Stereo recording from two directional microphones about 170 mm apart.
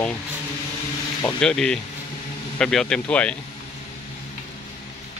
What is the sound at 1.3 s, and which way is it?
Speech, 5° left (ahead or behind).